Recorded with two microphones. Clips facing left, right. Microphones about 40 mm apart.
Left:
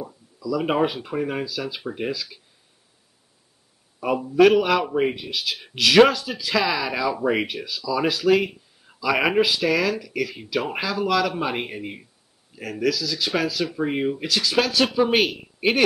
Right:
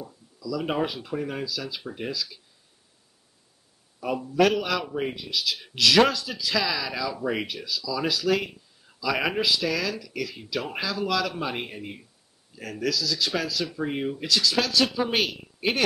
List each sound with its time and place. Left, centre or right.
0.0 s speech: centre
4.0 s a man's voice: centre